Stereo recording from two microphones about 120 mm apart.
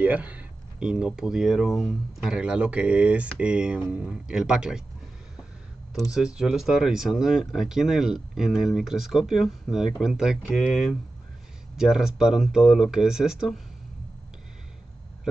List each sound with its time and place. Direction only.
0.0 s speech: 10° right (ahead or behind)
6.1 s speech: 5° right (ahead or behind)